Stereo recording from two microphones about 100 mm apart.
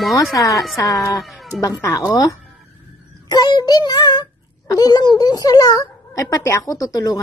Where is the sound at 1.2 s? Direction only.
Centre (ahead or behind).